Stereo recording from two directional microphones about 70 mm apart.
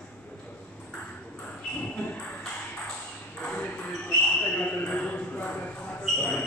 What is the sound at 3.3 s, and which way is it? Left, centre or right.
Ping, left.